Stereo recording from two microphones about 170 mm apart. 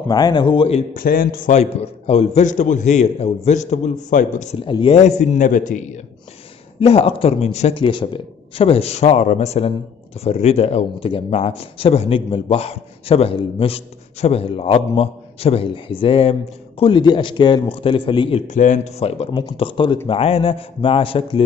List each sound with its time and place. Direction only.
0.1 s a man's voice: 25° left (ahead or behind)
0.9 s a man's voice: 60° left (ahead or behind)
4.6 s a man's voice: 30° left (ahead or behind)
5.2 s a man's voice: 45° left (ahead or behind)
6.8 s a man's voice: 35° left (ahead or behind)
18.5 s a man's voice: 45° left (ahead or behind)